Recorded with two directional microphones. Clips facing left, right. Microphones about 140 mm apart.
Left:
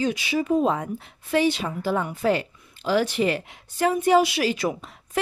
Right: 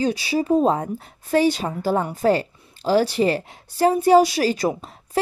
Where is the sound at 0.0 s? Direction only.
35° right (ahead or behind).